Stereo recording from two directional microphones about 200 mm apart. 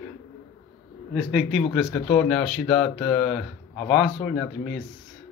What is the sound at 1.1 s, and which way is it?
Speech, centre (ahead or behind).